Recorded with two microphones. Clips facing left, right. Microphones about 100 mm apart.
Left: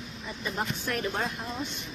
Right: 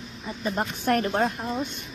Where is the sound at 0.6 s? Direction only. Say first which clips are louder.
Right 7 dB; 50° right (ahead or behind).